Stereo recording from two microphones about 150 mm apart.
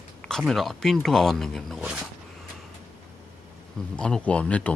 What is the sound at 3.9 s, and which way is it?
Speech, 5° left (ahead or behind).